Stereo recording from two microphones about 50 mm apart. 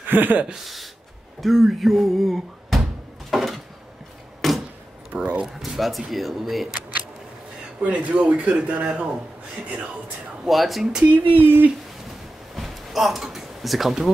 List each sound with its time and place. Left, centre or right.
0.0 s speech: right
1.4 s speech: centre
3.3 s a sound: centre
5.1 s speech: right
5.4 s speech: centre
7.8 s a man's voice: right
10.4 s speech: centre
11.3 s speech: right
12.5 s a sound: centre